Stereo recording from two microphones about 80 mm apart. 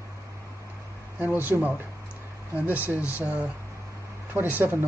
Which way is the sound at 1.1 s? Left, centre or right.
Right.